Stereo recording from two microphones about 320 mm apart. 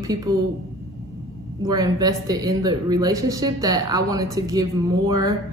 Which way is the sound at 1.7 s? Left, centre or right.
Centre.